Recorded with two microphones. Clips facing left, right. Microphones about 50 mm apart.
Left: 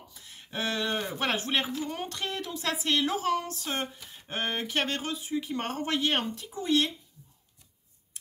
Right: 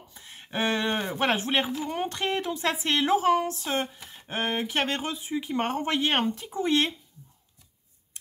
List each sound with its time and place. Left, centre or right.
0.1 s speech: right